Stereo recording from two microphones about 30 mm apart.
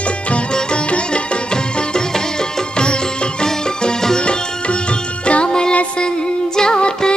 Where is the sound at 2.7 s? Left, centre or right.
Left.